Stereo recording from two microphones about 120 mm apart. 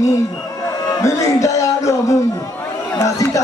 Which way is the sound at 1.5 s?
25° left (ahead or behind).